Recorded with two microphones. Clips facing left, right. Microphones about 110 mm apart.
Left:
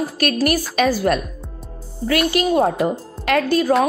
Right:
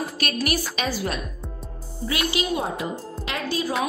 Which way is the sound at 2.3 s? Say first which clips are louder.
Left 9 dB; 50° left (ahead or behind).